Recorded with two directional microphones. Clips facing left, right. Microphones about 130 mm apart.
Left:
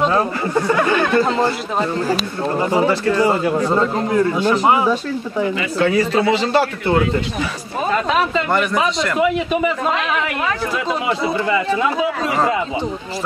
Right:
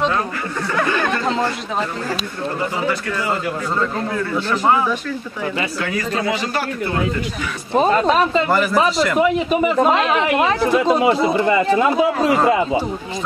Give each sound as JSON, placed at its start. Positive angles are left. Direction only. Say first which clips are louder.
{"t": 2.9, "sound": "speech", "louder": "left 6 dB", "side_deg": 30}
{"t": 4.4, "sound": "speech", "louder": "left 2 dB", "side_deg": 15}
{"t": 5.8, "sound": "speech", "louder": "left 6 dB", "side_deg": 30}
{"t": 7.9, "sound": "speech", "louder": "left 2 dB", "side_deg": -40}
{"t": 8.5, "sound": "a man's voice", "louder": "right 1 dB", "side_deg": 0}
{"t": 9.8, "sound": "a woman's voice", "louder": "right 4 dB", "side_deg": -30}
{"t": 10.9, "sound": "speech", "louder": "right 5 dB", "side_deg": -40}